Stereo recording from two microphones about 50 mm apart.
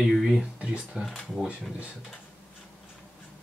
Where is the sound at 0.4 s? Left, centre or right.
Right.